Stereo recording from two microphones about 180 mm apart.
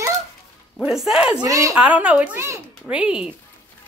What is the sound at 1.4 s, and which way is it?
Speech, 20° right (ahead or behind).